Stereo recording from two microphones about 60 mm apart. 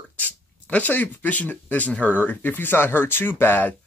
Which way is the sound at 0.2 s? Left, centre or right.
Left.